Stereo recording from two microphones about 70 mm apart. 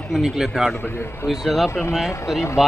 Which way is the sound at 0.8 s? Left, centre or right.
Left.